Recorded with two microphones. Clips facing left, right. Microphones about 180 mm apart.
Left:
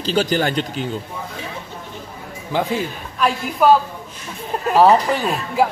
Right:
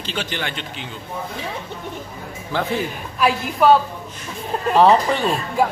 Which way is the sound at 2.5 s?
15° left (ahead or behind).